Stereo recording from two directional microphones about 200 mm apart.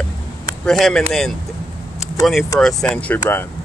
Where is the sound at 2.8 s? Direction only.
5° left (ahead or behind).